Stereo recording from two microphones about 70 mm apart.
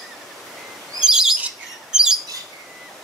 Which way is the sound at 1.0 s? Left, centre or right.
Centre.